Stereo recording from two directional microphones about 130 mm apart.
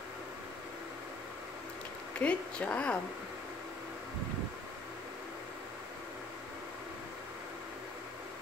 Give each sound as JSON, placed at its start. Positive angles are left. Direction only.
{"t": 2.1, "sound": "speech", "side_deg": 10}